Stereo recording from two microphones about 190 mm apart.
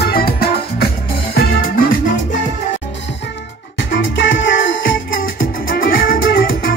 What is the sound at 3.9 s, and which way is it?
Music, 75° left (ahead or behind).